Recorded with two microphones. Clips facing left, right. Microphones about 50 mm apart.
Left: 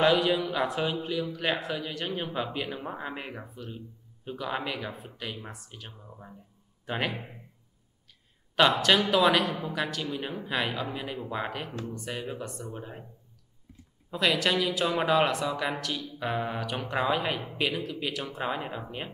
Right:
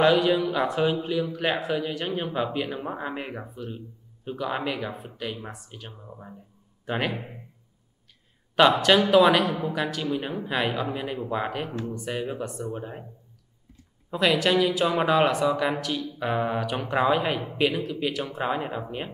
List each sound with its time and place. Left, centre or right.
0.0 s a man's voice: centre
8.5 s a man's voice: centre
14.1 s a man's voice: centre